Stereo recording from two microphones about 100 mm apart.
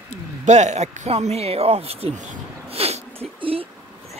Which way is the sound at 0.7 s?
90° right.